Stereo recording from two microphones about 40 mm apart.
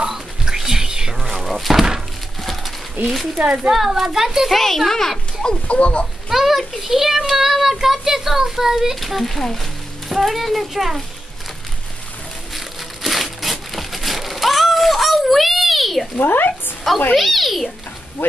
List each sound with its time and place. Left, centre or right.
0.1 s music: centre
1.2 s a sound: centre
3.4 s speech: right
3.7 s speech: centre
4.5 s a child's voice: centre
5.7 s speech: left
6.2 s speech: centre
9.0 s a child's voice: centre
10.0 s a child's voice: centre
12.5 s crumpling: centre
16.2 s speech: left
17.1 s a child's voice: centre